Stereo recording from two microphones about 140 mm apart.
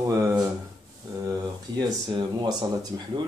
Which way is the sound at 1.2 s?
30° right (ahead or behind).